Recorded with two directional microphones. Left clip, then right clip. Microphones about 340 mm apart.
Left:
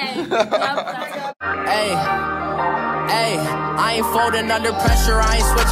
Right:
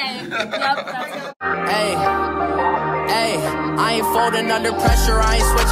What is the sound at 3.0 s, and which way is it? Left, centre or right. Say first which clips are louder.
Music: even; centre.